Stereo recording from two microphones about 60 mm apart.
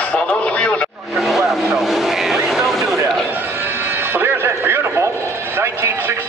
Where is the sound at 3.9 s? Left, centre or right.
Right.